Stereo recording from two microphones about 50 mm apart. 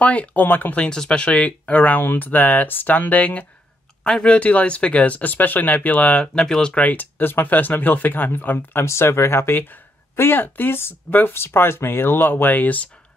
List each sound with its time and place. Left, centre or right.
0.0 s speech: left
0.8 s speech: centre; by 3.4 s left
4.0 s speech: centre
6.3 s speech: centre
6.7 s speech: left
8.8 s speech: left
9.5 s speech: left